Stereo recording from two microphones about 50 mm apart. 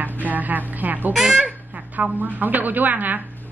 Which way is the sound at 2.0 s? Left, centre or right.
Right.